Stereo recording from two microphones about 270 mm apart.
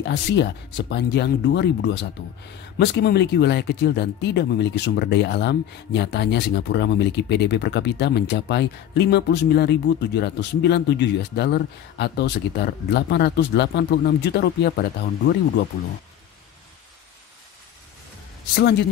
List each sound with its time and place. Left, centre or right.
0.0 s speech: left
18.6 s speech: left